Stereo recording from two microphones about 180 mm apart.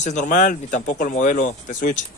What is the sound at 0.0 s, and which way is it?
Speech, 45° left (ahead or behind).